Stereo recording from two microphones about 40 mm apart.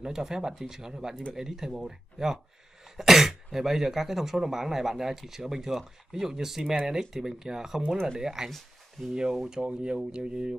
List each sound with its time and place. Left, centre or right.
0.0 s speech: centre
8.5 s speech: centre
9.1 s speech: centre